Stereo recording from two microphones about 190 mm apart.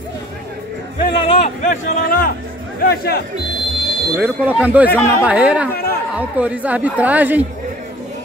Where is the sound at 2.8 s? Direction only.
55° left (ahead or behind).